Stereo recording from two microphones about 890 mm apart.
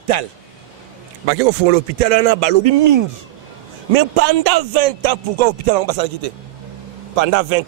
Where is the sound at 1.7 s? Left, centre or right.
Right.